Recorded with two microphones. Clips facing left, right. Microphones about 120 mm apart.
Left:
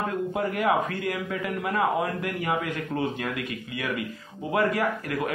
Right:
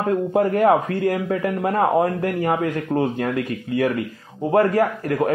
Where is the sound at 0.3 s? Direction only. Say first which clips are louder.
Right 9 dB; 40° right (ahead or behind).